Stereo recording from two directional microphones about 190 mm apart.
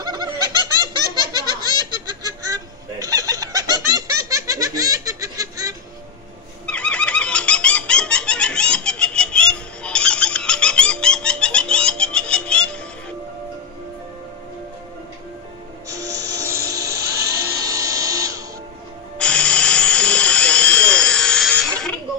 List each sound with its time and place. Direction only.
0.0 s snicker: 20° right (ahead or behind)
2.0 s bird: 20° right (ahead or behind)
6.6 s fowl: 5° left (ahead or behind)
15.9 s music: 15° right (ahead or behind)
19.1 s a sound: 5° left (ahead or behind)